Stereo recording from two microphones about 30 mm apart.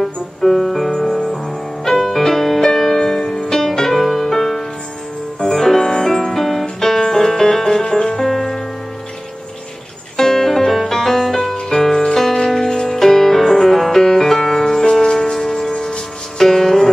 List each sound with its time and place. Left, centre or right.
0.0 s music: centre
4.0 s music: centre; by 8.1 s left
8.2 s music: centre
10.1 s music: centre
12.8 s music: centre